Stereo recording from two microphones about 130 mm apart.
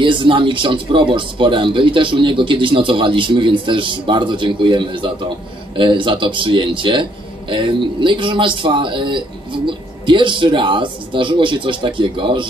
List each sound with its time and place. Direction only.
0.0 s a man's voice: 40° right (ahead or behind)